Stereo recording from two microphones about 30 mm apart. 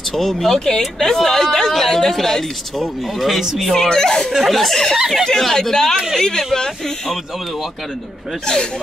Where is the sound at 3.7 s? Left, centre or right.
Centre.